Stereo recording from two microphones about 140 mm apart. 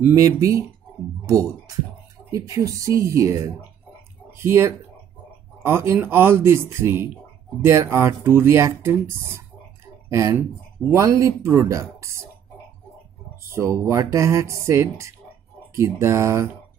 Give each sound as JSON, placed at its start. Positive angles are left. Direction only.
{"t": 0.0, "sound": "speech", "side_deg": -20}
{"t": 13.4, "sound": "speech", "side_deg": -20}